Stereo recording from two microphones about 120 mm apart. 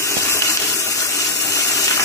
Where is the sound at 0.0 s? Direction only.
25° left (ahead or behind).